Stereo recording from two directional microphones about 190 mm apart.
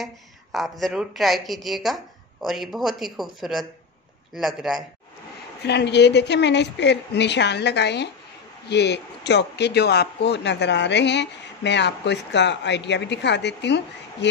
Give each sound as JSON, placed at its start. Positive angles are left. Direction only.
{"t": 0.0, "sound": "a woman's voice", "side_deg": 0}
{"t": 5.7, "sound": "speech", "side_deg": 65}